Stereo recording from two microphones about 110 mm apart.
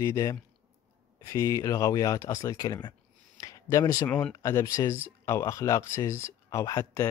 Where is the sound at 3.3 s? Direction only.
30° left (ahead or behind).